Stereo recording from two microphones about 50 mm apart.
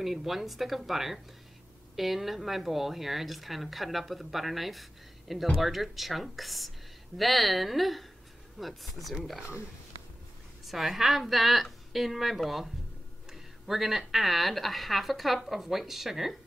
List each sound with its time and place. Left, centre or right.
0.0 s a woman's voice: centre
10.6 s a woman's voice: centre